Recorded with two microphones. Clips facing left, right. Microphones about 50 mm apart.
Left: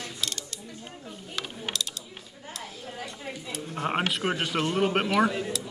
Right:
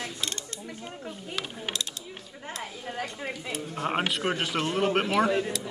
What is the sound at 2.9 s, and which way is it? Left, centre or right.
Speech, right.